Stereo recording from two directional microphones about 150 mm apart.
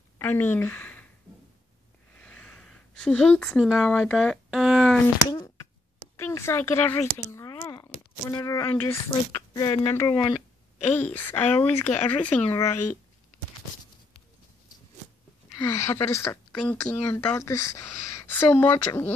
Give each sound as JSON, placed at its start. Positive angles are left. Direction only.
{"t": 0.2, "sound": "a woman's voice", "side_deg": 15}
{"t": 2.1, "sound": "a sound", "side_deg": 5}
{"t": 5.0, "sound": "speech", "side_deg": 20}
{"t": 11.0, "sound": "a woman's voice", "side_deg": 15}
{"t": 12.5, "sound": "speech", "side_deg": 20}
{"t": 15.5, "sound": "a woman's voice", "side_deg": 20}